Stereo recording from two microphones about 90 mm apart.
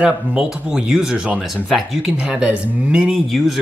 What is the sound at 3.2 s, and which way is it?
Speech, centre (ahead or behind).